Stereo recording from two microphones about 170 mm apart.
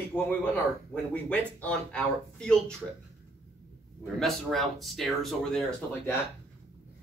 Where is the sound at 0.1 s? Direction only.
10° left (ahead or behind).